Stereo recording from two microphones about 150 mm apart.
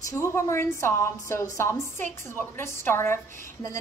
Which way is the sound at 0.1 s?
20° left (ahead or behind).